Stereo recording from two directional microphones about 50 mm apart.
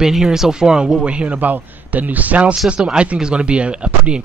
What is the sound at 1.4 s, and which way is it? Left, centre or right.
A man's voice, right.